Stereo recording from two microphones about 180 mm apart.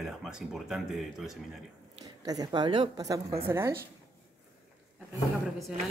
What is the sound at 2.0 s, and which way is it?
Speech, 20° right (ahead or behind).